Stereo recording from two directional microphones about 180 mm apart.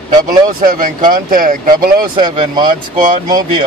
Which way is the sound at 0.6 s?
50° right (ahead or behind).